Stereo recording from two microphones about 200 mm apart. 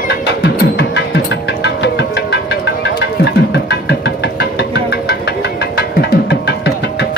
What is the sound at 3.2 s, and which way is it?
Music, 60° left (ahead or behind).